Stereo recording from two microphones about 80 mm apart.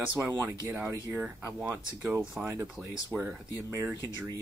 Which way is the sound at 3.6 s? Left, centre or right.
Right.